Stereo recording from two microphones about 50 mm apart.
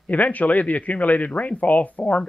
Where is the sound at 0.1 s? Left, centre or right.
Left.